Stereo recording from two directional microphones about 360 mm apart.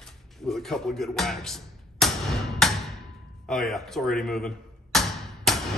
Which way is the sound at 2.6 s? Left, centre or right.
Centre.